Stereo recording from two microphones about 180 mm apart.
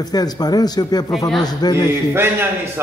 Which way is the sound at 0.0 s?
20° left (ahead or behind).